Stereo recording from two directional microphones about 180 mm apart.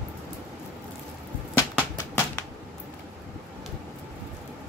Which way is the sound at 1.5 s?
10° left (ahead or behind).